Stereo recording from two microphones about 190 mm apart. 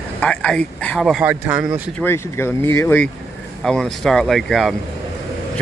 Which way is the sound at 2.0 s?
10° left (ahead or behind).